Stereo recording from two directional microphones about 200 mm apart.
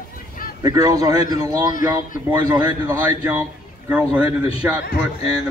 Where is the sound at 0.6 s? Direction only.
15° right (ahead or behind).